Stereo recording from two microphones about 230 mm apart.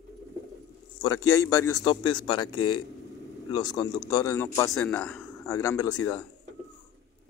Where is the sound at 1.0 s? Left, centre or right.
Centre.